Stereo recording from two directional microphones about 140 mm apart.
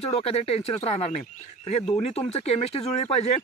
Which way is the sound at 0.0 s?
45° left (ahead or behind).